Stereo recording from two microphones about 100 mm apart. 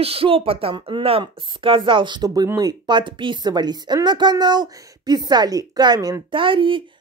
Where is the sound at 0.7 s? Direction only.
50° right (ahead or behind).